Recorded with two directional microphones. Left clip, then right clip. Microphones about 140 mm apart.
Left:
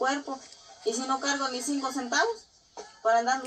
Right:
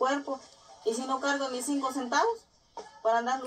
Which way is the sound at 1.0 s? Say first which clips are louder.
Left 2 dB; 45° right (ahead or behind).